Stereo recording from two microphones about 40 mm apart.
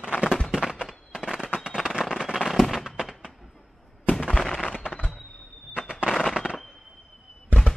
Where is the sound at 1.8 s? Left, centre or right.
Centre.